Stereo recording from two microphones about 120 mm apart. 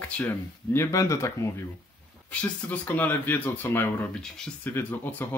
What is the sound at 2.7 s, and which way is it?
Speech, 15° left (ahead or behind).